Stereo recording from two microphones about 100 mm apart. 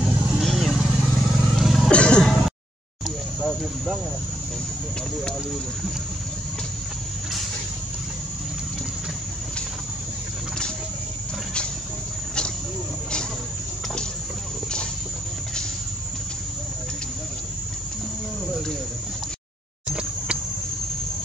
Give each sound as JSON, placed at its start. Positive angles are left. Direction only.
{"t": 0.4, "sound": "vehicle", "side_deg": 0}
{"t": 1.9, "sound": "music", "side_deg": 10}
{"t": 3.3, "sound": "cricket", "side_deg": 0}
{"t": 19.9, "sound": "vehicle", "side_deg": -10}